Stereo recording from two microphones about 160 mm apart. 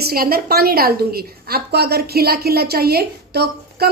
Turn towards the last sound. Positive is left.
turn(degrees=-85)